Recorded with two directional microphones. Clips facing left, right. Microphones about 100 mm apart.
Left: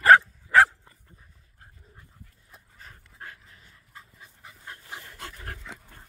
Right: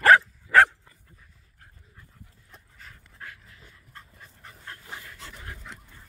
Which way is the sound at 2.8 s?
30° left (ahead or behind).